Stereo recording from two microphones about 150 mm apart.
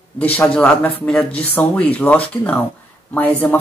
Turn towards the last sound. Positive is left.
turn(degrees=10)  # may be behind; listen again after turning